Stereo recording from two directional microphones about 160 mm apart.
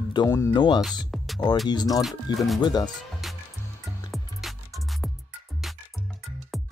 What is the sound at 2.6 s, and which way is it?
Speech, 25° left (ahead or behind).